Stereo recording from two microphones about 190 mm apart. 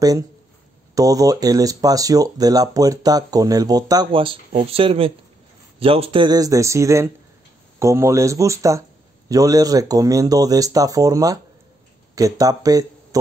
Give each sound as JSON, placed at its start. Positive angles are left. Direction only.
{"t": 0.9, "sound": "speech", "side_deg": -20}